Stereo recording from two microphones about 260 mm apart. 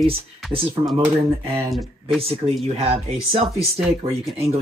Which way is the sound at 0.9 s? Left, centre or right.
Centre.